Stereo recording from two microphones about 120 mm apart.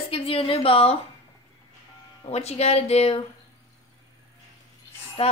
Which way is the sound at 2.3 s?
60° left (ahead or behind).